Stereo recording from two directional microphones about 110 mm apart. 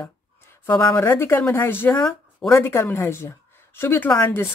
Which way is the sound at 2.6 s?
25° left (ahead or behind).